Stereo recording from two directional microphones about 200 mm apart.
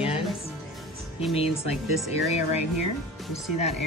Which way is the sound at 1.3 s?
30° left (ahead or behind).